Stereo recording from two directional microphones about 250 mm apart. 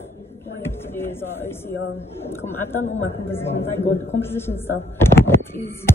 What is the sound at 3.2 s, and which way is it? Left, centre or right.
Speech, centre.